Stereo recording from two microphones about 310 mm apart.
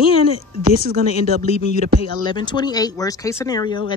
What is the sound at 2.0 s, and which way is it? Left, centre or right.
A woman's voice, centre.